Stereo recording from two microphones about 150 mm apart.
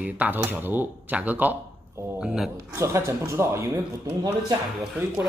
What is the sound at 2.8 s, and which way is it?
Speech, 20° right (ahead or behind).